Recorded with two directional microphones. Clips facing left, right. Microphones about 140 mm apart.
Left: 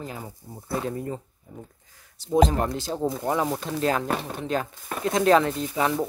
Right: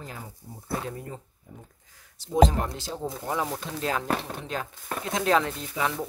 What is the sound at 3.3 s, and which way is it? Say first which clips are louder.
Speech: left 2 dB; 50° left (ahead or behind).